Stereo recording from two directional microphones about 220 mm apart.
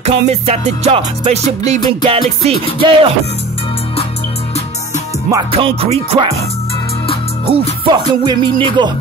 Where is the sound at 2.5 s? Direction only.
25° left (ahead or behind).